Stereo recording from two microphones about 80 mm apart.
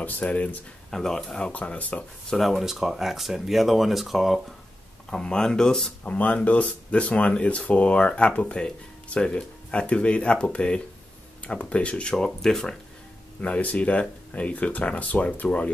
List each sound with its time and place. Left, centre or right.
0.2 s speech: centre
0.9 s speech: centre
2.2 s speech: centre
5.1 s speech: centre
13.4 s speech: centre